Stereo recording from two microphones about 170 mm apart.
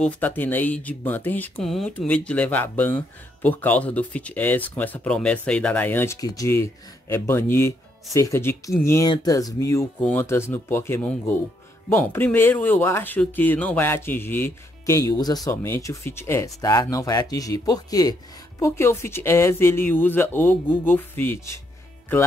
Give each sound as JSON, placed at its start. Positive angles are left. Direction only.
{"t": 0.0, "sound": "speech", "side_deg": 10}